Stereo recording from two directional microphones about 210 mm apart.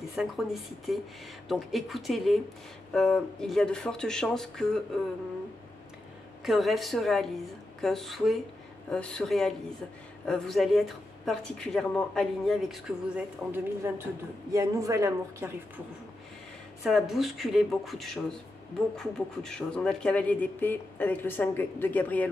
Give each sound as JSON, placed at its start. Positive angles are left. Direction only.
{"t": 0.1, "sound": "speech", "side_deg": 0}
{"t": 6.4, "sound": "speech", "side_deg": 0}
{"t": 16.8, "sound": "speech", "side_deg": 0}